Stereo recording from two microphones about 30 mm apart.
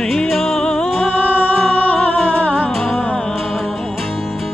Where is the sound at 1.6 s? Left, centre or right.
Left.